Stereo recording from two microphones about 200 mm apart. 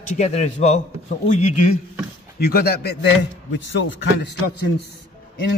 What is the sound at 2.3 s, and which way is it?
Speech, 50° left (ahead or behind).